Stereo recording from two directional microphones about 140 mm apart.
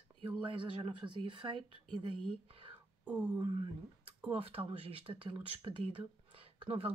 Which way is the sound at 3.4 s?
40° right (ahead or behind).